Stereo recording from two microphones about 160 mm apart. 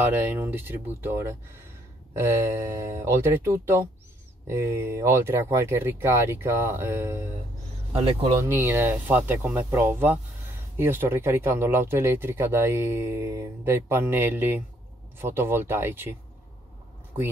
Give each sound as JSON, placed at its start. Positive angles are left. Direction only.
{"t": 0.0, "sound": "speech", "side_deg": -10}
{"t": 8.4, "sound": "speech", "side_deg": -15}